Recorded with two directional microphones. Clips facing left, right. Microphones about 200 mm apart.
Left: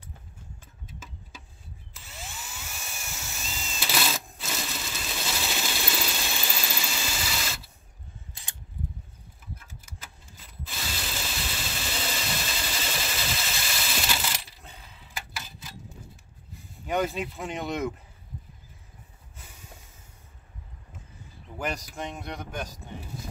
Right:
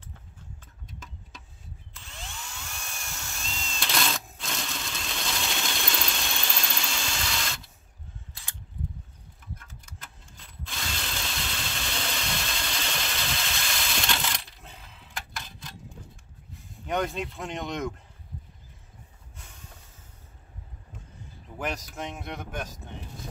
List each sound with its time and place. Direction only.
0.8 s a sound: 5° left (ahead or behind)
2.0 s drill: 5° left (ahead or behind)
8.5 s a sound: 20° left (ahead or behind)
9.6 s mechanisms: 5° left (ahead or behind)
16.8 s speech: 5° left (ahead or behind)
19.3 s hiss: 5° left (ahead or behind)
21.5 s speech: centre (ahead or behind)